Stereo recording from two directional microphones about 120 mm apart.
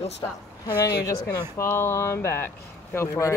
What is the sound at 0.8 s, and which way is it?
Speech, 30° left (ahead or behind).